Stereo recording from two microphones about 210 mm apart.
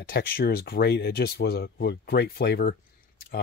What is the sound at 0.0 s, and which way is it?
Speech, 45° left (ahead or behind).